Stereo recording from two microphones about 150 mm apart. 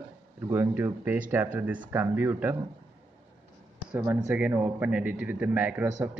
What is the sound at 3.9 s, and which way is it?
Speech, 10° right (ahead or behind).